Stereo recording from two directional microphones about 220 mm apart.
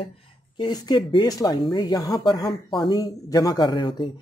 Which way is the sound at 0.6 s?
20° left (ahead or behind).